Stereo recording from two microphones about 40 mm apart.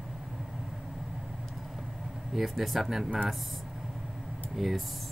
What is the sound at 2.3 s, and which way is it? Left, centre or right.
Speech, centre.